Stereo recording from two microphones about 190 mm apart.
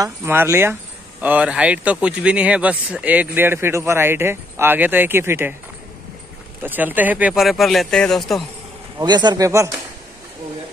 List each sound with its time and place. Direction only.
0.0 s speech: 15° right (ahead or behind)
6.6 s speech: 10° right (ahead or behind)
8.9 s speech: 20° right (ahead or behind)